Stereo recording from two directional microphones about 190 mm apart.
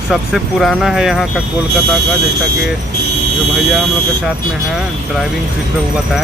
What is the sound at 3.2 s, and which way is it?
Vehicle, 65° right (ahead or behind).